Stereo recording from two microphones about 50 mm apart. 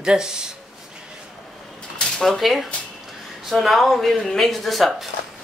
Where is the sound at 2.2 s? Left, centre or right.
Centre.